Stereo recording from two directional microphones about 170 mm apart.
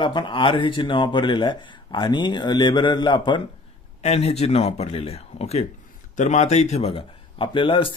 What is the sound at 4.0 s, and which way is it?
A man's voice, 40° left (ahead or behind).